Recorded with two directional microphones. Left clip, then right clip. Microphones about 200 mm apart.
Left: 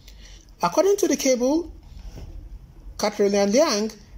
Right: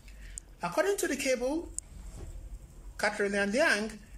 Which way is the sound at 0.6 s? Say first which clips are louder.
Left 10 dB; 15° left (ahead or behind).